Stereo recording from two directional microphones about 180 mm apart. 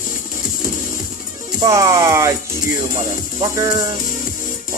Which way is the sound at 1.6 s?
15° right (ahead or behind).